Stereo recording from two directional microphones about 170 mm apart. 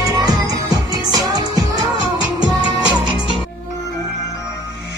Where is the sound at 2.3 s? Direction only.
25° right (ahead or behind).